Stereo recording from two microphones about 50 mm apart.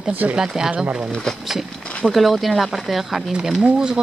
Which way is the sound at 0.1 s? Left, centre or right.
Right.